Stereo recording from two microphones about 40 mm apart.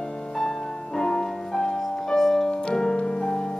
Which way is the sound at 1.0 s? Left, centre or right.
Centre.